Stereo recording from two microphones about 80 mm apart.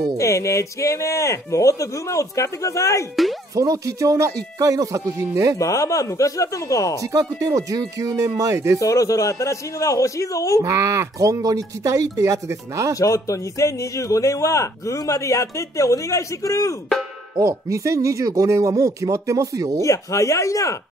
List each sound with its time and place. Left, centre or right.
0.2 s a man's voice: left
3.5 s speech: right
5.6 s speech: left
7.0 s speech: right
8.7 s a man's voice: left
10.6 s speech: right
12.9 s a man's voice: left
17.4 s speech: right
19.8 s a man's voice: left